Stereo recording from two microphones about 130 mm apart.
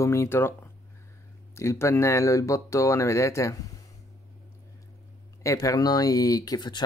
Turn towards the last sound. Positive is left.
turn(degrees=30)  # may be behind; listen again after turning